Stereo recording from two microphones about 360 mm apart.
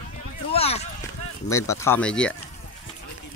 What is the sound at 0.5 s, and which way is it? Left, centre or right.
Speech, centre.